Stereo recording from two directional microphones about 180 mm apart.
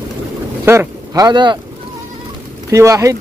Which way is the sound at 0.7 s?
20° right (ahead or behind).